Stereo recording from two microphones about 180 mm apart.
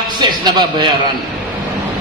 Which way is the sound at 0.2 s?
25° right (ahead or behind).